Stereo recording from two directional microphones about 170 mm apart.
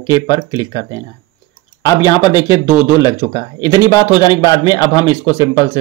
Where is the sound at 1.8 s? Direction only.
20° left (ahead or behind).